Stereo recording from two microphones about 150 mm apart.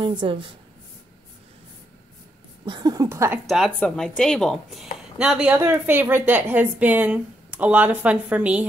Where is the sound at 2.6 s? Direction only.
25° right (ahead or behind).